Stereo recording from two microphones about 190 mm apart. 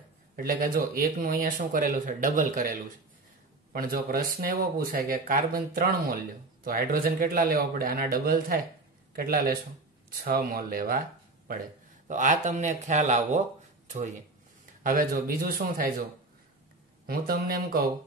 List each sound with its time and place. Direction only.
0.4 s speech: 50° right (ahead or behind)
17.0 s speech: 50° right (ahead or behind)